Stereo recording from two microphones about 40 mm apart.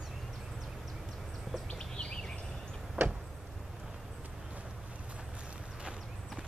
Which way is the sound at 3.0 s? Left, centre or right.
Right.